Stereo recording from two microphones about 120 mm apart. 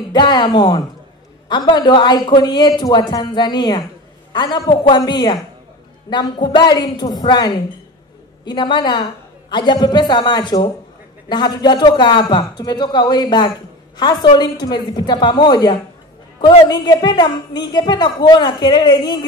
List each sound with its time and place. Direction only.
0.1 s a woman's voice: 40° left (ahead or behind)